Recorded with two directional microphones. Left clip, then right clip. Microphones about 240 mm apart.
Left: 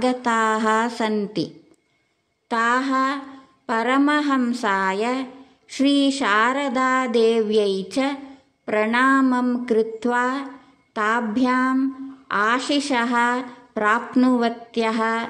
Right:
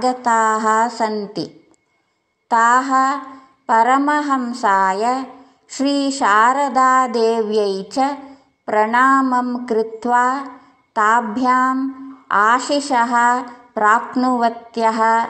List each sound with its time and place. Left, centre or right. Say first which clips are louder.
0.2 s a woman's voice: right 5 dB; left
9.0 s a sound: right 3 dB; left
9.3 s speech: right 3 dB; centre